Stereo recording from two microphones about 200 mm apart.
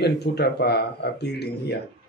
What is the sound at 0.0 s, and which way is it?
Speech, 55° left (ahead or behind).